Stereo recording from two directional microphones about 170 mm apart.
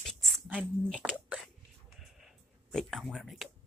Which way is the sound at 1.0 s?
5° right (ahead or behind).